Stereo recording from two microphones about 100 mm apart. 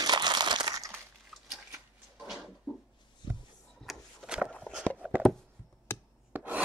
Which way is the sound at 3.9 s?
10° right (ahead or behind).